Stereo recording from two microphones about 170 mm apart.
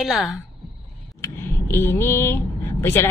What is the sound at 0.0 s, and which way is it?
Speech, centre (ahead or behind).